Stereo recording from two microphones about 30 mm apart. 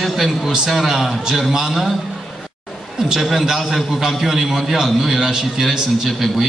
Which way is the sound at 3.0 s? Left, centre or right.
Centre.